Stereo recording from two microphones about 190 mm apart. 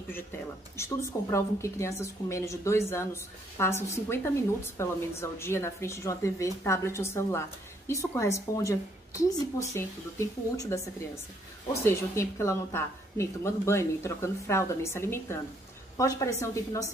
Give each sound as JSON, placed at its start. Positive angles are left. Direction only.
{"t": 0.7, "sound": "a woman's voice", "side_deg": 15}
{"t": 11.8, "sound": "a woman's voice", "side_deg": 15}